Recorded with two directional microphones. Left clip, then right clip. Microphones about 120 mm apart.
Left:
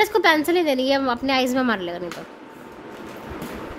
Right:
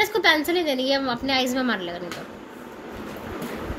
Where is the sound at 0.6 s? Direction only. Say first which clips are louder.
Left 3 dB; 90° left.